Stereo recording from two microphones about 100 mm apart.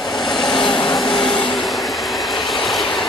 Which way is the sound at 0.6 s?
50° left (ahead or behind).